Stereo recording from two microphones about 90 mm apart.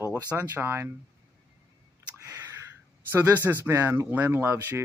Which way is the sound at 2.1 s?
35° right (ahead or behind).